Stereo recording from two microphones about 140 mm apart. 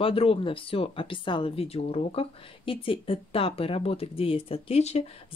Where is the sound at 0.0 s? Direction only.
40° left (ahead or behind).